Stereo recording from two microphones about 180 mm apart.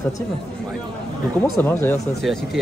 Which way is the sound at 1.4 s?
10° left (ahead or behind).